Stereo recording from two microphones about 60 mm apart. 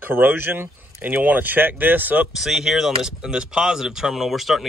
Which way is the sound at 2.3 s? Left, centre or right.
Centre.